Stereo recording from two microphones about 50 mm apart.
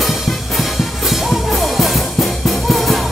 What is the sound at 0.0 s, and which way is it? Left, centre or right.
Music, centre.